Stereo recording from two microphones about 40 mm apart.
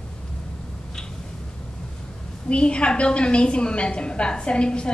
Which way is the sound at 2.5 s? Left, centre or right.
Left.